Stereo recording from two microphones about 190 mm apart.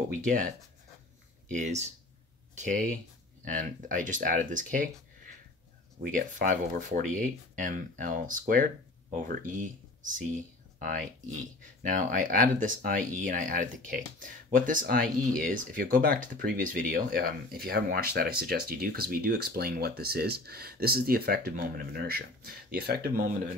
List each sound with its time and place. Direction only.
0.1 s speech: 40° right (ahead or behind)
1.5 s speech: 40° right (ahead or behind)